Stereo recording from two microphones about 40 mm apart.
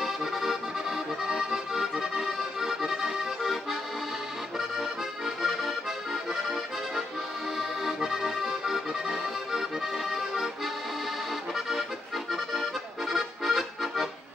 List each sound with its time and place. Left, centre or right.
0.0 s accordion: centre
4.6 s accordion: centre
7.5 s accordion: centre
12.3 s accordion: centre